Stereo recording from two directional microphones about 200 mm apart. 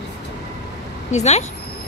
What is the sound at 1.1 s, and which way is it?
Speech, 35° left (ahead or behind).